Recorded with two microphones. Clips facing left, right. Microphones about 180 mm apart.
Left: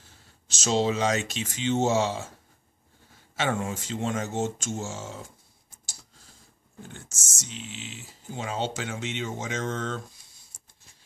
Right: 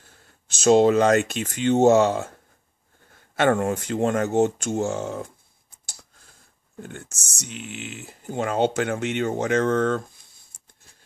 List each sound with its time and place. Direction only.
0.0 s speech: 50° right (ahead or behind)
6.8 s speech: 60° right (ahead or behind)